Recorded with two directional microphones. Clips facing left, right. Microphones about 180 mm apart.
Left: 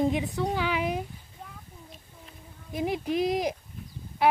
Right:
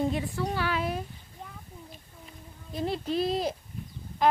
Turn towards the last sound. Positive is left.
turn(degrees=15)  # may be behind; listen again after turning